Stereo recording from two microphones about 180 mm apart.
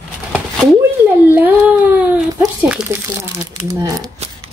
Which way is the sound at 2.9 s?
15° right (ahead or behind).